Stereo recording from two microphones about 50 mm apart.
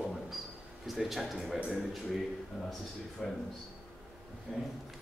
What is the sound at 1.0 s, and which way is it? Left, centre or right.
A man's voice, centre.